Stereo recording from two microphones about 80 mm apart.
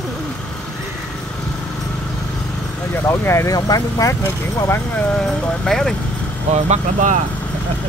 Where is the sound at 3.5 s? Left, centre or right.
Left.